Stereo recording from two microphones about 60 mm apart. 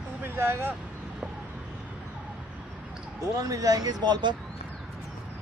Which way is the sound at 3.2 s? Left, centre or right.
Right.